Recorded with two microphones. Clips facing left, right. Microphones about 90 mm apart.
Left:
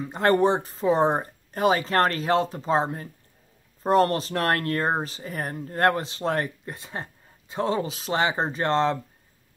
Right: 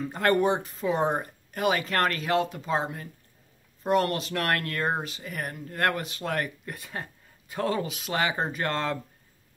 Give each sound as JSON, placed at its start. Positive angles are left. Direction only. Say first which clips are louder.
{"t": 0.0, "sound": "speech", "louder": "left 3 dB", "side_deg": 20}
{"t": 0.3, "sound": "speech", "louder": "left 3 dB", "side_deg": 35}